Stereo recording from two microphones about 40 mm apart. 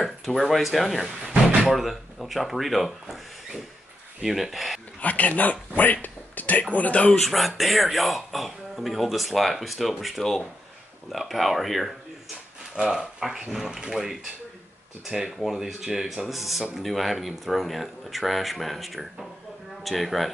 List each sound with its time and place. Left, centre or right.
0.0 s speech: centre
5.0 s speech: left
7.2 s speech: centre
12.8 s speech: centre
15.0 s speech: centre